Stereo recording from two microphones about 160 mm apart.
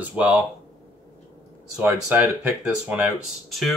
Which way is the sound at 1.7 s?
10° right (ahead or behind).